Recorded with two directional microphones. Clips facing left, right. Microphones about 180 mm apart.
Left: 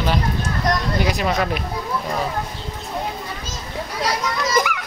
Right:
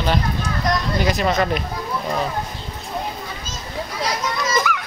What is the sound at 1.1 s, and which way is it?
Speech, 5° left (ahead or behind).